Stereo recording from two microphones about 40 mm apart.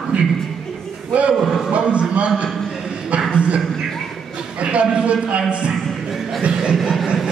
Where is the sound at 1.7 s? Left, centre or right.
Right.